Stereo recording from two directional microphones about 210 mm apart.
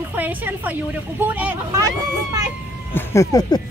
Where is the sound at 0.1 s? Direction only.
10° right (ahead or behind).